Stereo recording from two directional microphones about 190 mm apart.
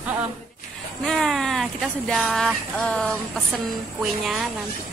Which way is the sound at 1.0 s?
Centre (ahead or behind).